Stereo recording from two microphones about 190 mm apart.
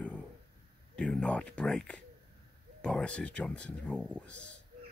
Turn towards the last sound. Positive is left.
turn(degrees=5)  # may be behind; listen again after turning